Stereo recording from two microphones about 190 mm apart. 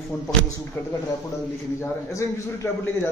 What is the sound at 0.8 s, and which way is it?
A man's voice, 15° left (ahead or behind).